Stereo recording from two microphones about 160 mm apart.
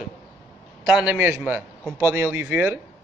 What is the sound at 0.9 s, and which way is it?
A man's voice, 5° right (ahead or behind).